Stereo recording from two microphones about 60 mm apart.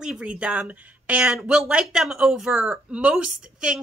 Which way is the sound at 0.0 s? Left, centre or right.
Centre.